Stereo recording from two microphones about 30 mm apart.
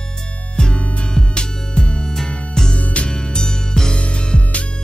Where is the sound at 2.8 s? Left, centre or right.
Left.